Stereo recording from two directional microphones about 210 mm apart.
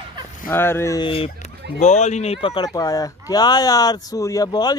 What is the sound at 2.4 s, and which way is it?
Speech, 20° left (ahead or behind).